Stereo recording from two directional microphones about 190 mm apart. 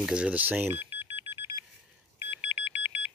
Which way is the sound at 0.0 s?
5° right (ahead or behind).